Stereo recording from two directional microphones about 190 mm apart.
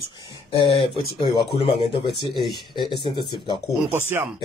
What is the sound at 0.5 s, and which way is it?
Speech, 25° left (ahead or behind).